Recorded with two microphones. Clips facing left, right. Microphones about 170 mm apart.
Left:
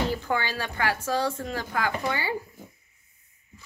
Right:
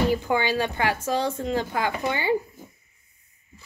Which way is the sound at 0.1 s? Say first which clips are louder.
Right 5 dB; 15° right (ahead or behind).